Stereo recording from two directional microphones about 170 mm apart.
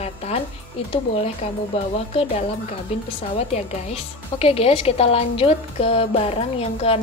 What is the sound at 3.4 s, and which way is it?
A woman's voice, 40° left (ahead or behind).